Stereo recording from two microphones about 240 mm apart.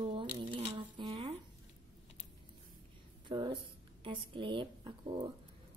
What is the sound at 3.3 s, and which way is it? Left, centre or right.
Speech, centre.